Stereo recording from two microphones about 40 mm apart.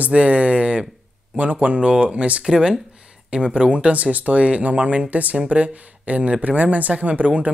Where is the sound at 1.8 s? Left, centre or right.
Right.